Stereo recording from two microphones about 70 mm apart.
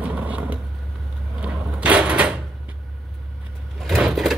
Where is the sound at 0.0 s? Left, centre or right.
Right.